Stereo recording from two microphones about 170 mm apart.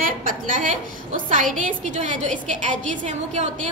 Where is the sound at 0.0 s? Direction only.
55° right (ahead or behind).